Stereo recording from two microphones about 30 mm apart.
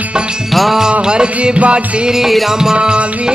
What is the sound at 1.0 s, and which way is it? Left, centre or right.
Music, right.